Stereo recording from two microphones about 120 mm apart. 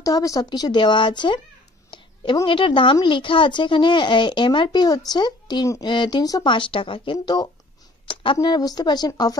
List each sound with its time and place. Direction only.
0.0 s a woman's voice: 30° left (ahead or behind)
6.5 s a woman's voice: 45° left (ahead or behind)